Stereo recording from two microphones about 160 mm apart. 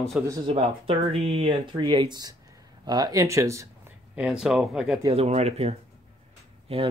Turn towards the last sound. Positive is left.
turn(degrees=-40)  # may be behind; listen again after turning